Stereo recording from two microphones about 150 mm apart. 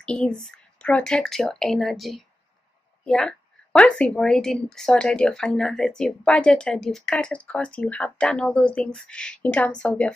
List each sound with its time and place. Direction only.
0.0 s a woman's voice: 5° left (ahead or behind)